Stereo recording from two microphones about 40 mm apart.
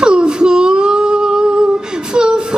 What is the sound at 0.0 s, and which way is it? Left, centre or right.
Female singing, right.